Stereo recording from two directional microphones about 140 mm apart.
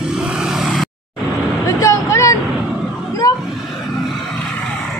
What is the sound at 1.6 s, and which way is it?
Vehicle, 20° left (ahead or behind).